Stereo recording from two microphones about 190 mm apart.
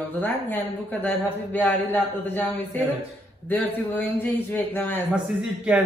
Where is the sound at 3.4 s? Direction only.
10° left (ahead or behind).